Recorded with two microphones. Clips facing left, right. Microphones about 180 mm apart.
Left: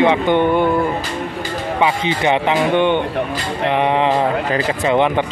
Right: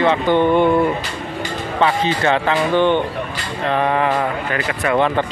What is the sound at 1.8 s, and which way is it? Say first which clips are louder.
A man's voice: right 1 dB; 15° left (ahead or behind).